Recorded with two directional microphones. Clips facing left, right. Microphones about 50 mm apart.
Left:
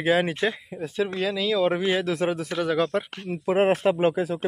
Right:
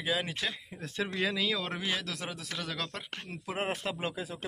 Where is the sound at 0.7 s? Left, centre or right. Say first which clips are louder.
Left 9 dB; centre.